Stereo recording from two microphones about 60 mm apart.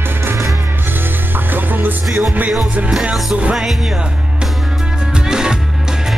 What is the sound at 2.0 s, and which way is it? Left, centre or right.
Music, centre.